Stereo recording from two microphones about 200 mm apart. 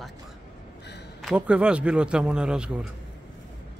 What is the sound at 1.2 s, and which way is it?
A man's voice, 5° right (ahead or behind).